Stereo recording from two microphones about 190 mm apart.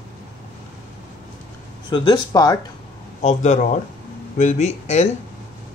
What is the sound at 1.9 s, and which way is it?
Speech, 25° left (ahead or behind).